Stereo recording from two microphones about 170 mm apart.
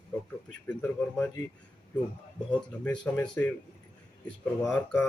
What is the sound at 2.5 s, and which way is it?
Speech, 5° left (ahead or behind).